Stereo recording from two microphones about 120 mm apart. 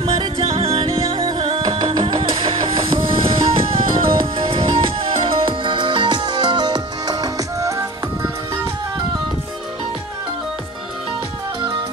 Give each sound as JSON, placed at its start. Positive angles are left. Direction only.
{"t": 0.5, "sound": "music", "side_deg": -55}